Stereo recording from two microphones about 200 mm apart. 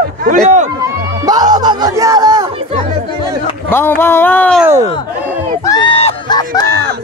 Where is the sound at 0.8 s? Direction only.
20° right (ahead or behind).